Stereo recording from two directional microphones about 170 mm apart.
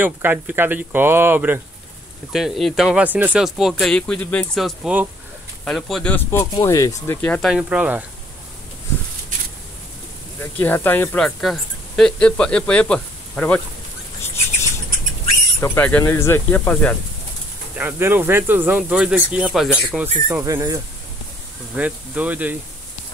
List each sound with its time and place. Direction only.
0.0 s speech: 10° right (ahead or behind)
2.3 s speech: centre (ahead or behind); by 7.2 s 20° left (ahead or behind)
7.2 s speech: 5° left (ahead or behind)
10.4 s speech: 10° left (ahead or behind)
15.6 s speech: 10° left (ahead or behind)
17.7 s speech: 10° right (ahead or behind)
20.2 s speech: 15° right (ahead or behind)
21.7 s speech: 10° right (ahead or behind)